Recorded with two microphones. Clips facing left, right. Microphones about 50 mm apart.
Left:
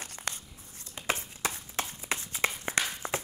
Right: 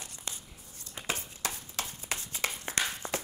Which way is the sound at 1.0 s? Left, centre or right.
Left.